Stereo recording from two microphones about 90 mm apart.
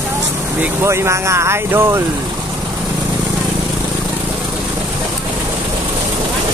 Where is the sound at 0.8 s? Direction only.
30° right (ahead or behind).